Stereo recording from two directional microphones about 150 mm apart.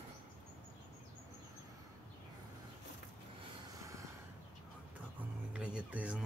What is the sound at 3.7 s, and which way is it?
Snort, 20° right (ahead or behind).